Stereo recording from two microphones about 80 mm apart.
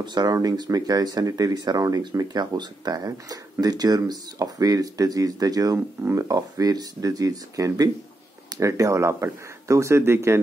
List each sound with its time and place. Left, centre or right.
0.0 s speech: right